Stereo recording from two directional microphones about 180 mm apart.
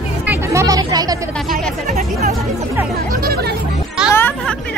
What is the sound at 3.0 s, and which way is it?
Speech, 55° right (ahead or behind).